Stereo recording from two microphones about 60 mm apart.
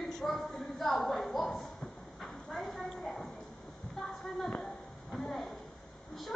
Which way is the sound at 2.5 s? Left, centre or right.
Centre.